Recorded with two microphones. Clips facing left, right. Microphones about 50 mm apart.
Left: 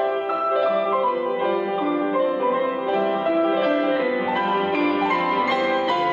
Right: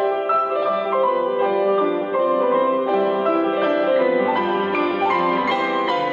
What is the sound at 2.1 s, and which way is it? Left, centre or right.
Music, centre.